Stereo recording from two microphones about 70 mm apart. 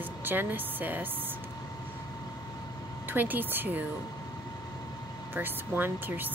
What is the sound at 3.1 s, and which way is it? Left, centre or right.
Speech, right.